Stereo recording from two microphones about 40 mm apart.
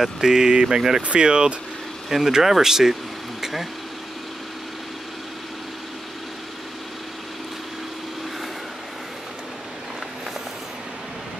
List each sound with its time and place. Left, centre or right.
0.0 s speech: centre
2.0 s speech: centre